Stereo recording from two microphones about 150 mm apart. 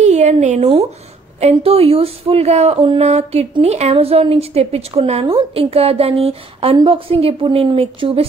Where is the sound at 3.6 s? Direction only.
45° right (ahead or behind).